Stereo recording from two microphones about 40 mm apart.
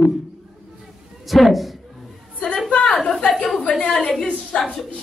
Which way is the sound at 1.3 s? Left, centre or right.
Centre.